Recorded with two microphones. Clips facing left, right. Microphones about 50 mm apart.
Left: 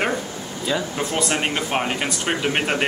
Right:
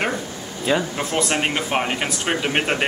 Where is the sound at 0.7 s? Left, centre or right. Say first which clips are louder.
Right 4 dB; right.